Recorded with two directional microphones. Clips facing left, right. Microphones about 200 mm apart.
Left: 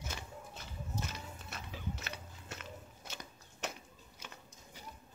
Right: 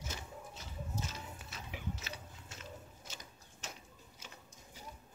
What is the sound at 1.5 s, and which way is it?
Biting, 55° left (ahead or behind).